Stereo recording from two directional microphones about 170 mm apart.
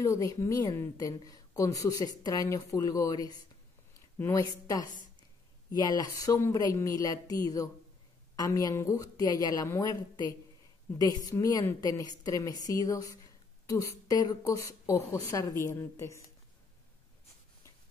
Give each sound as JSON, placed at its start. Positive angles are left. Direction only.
{"t": 0.0, "sound": "a woman's voice", "side_deg": 20}